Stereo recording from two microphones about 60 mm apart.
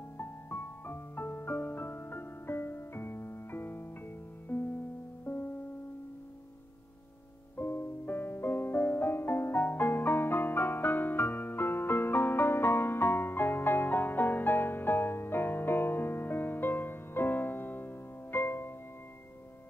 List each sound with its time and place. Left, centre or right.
0.2 s music: left
4.5 s music: left
7.5 s music: left